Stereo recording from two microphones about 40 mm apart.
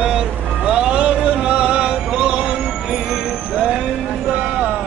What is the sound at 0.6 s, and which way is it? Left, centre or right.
Music, right.